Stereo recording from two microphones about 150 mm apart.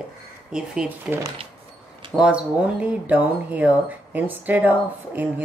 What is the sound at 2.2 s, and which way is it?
Speech, 5° right (ahead or behind).